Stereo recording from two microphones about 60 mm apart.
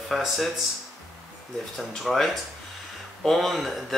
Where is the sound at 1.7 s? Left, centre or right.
Centre.